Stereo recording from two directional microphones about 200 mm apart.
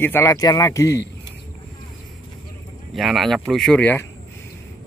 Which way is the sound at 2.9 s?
Centre (ahead or behind).